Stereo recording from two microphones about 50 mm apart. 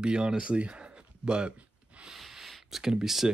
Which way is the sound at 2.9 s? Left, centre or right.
Centre.